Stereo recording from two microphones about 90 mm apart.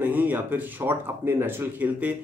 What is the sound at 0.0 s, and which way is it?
Speech, 20° right (ahead or behind).